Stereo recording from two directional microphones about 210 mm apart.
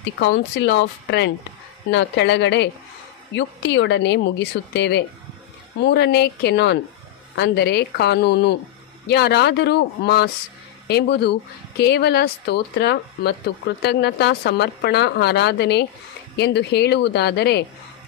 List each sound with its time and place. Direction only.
0.0 s a woman's voice: 60° left (ahead or behind)